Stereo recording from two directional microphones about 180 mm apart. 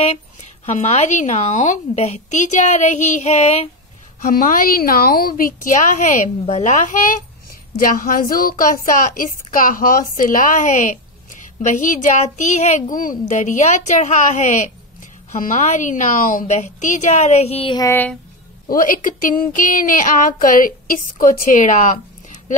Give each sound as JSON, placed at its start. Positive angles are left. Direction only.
{"t": 0.7, "sound": "a child's voice", "side_deg": 40}
{"t": 4.2, "sound": "a woman's voice", "side_deg": 50}
{"t": 17.8, "sound": "speech", "side_deg": 10}
{"t": 18.7, "sound": "a woman's voice", "side_deg": 50}